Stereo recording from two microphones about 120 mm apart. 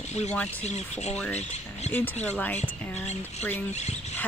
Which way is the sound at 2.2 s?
10° left (ahead or behind).